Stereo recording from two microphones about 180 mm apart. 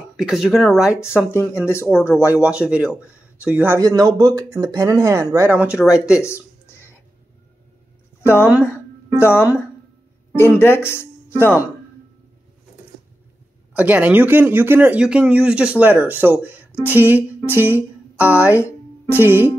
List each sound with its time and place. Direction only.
0.2 s speech: centre (ahead or behind)
1.1 s speech: 15° left (ahead or behind)
2.4 s speech: 5° right (ahead or behind)
6.2 s a sound: 15° left (ahead or behind)
9.2 s speech: 15° left (ahead or behind)
13.7 s speech: 10° right (ahead or behind)